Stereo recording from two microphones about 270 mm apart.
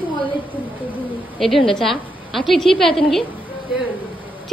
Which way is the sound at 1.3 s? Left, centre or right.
Centre.